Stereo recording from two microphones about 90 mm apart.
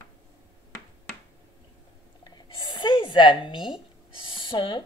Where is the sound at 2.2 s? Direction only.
50° left (ahead or behind).